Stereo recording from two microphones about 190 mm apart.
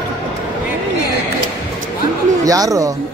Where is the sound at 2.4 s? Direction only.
20° right (ahead or behind).